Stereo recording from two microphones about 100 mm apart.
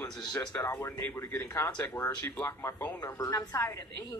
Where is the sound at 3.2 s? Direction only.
35° left (ahead or behind).